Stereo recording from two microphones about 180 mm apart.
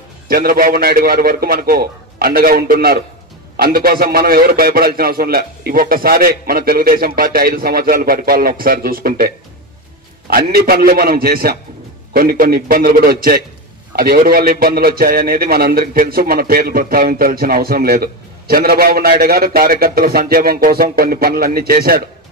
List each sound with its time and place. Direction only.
0.3 s a man's voice: 55° right (ahead or behind)
10.3 s a man's voice: 55° right (ahead or behind)